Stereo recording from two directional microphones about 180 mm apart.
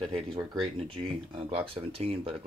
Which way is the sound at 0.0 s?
30° right (ahead or behind).